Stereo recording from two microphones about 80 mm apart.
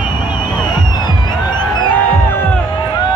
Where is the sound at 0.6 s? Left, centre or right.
Left.